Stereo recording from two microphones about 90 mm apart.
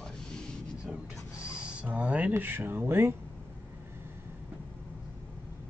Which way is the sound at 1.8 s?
15° right (ahead or behind).